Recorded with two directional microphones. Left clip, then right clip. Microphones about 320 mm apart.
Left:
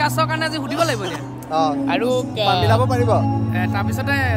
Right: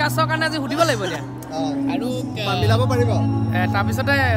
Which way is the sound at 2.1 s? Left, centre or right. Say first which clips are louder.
Left 6 dB; centre.